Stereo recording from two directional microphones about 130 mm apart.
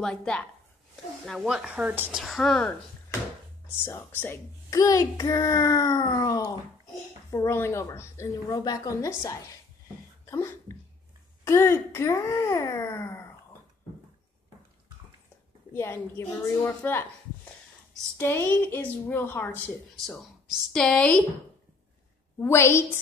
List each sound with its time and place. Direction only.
0.0 s a woman's voice: 5° left (ahead or behind)
1.2 s speech: centre (ahead or behind)
2.2 s speech: 5° left (ahead or behind)
3.8 s a woman's voice: 20° left (ahead or behind)
10.2 s a sound: 25° left (ahead or behind)
11.4 s a child's voice: 20° left (ahead or behind)
15.7 s a woman's voice: 20° left (ahead or behind)
18.1 s a woman's voice: 15° left (ahead or behind)
20.1 s a woman's voice: 5° left (ahead or behind)
22.4 s a child's voice: 20° left (ahead or behind)